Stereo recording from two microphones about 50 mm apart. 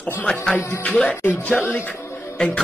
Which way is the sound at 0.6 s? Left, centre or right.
Left.